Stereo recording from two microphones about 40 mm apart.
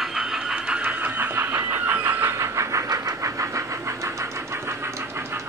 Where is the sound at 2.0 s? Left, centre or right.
Right.